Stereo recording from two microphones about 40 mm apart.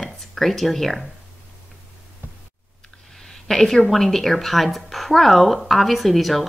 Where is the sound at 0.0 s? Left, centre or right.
Centre.